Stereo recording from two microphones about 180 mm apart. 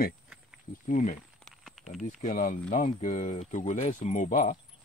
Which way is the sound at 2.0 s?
50° left (ahead or behind).